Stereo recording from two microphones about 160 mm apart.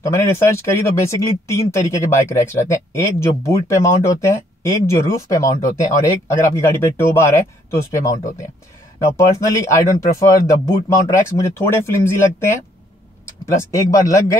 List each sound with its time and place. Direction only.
0.0 s speech: 15° left (ahead or behind)
9.7 s speech: 20° left (ahead or behind)